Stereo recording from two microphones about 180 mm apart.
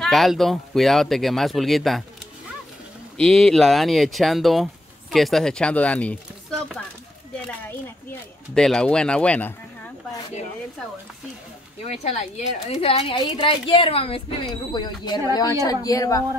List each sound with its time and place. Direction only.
0.0 s speech: centre (ahead or behind)
3.2 s speech: 5° left (ahead or behind)
8.5 s speech: 5° left (ahead or behind)
11.9 s a woman's voice: 40° left (ahead or behind); by 16.2 s 20° left (ahead or behind)